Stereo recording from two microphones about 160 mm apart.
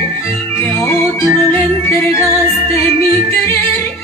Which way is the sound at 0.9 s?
10° left (ahead or behind).